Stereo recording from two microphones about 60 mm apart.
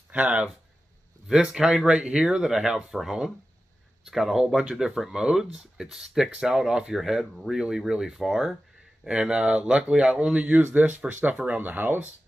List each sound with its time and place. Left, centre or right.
0.1 s speech: right
1.2 s speech: centre
2.0 s speech: centre
9.0 s speech: centre; by 12.1 s right